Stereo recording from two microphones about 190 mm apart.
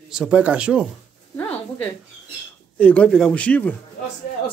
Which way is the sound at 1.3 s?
10° left (ahead or behind).